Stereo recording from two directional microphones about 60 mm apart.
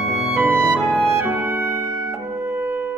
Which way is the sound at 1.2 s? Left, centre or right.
Right.